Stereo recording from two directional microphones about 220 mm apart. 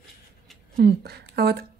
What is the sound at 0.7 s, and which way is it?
Speech, 45° right (ahead or behind).